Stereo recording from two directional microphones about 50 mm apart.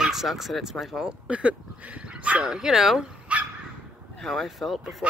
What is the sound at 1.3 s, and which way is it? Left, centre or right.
Dog, right.